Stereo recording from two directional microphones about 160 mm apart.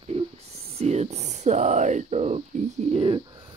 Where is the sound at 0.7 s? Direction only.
40° right (ahead or behind).